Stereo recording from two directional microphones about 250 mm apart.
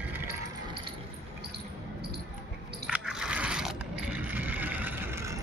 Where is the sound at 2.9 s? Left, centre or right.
Centre.